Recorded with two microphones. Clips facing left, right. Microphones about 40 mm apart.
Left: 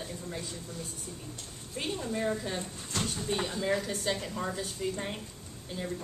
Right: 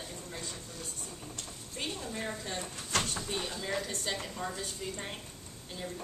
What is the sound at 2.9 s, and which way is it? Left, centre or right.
Speech, right.